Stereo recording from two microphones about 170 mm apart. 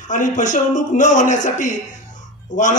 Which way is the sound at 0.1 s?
45° left (ahead or behind).